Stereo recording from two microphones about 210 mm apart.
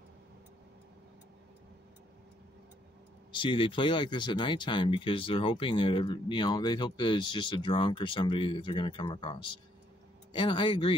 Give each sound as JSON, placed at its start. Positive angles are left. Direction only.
{"t": 3.3, "sound": "speech", "side_deg": 25}